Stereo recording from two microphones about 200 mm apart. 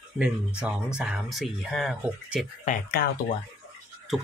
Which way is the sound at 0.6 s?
5° right (ahead or behind).